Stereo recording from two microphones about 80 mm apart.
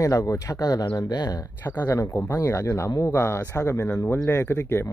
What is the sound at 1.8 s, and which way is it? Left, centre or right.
Speech, left.